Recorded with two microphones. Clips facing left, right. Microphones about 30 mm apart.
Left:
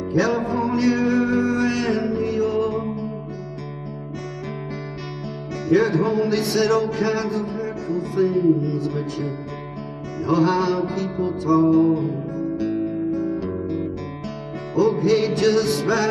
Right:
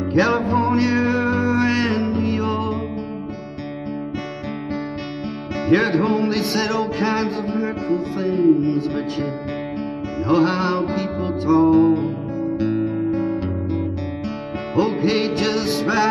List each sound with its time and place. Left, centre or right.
0.1 s music: right
5.7 s music: right
8.2 s music: centre
8.6 s music: right
14.8 s music: right
15.3 s music: centre